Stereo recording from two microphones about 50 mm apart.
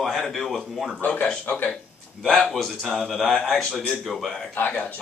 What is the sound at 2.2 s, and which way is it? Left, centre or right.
Speech, centre.